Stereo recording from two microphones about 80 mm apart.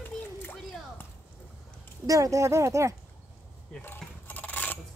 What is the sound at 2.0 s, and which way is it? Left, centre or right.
Speech, right.